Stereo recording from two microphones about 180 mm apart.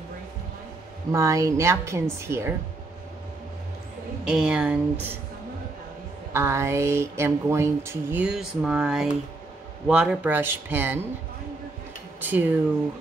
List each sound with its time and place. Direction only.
1.1 s speech: 15° right (ahead or behind)
4.2 s speech: 5° right (ahead or behind)
6.3 s speech: 15° right (ahead or behind)
12.2 s speech: 10° right (ahead or behind)